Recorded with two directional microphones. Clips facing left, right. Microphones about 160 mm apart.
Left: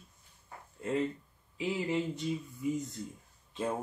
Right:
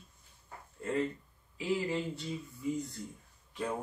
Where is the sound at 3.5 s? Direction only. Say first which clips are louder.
Left 2 dB; 25° left (ahead or behind).